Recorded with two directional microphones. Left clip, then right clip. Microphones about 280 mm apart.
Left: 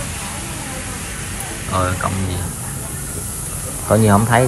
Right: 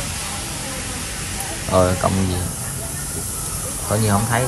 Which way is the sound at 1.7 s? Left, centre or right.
Centre.